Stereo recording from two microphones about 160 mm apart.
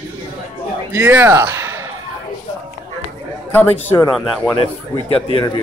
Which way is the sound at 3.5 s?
10° left (ahead or behind).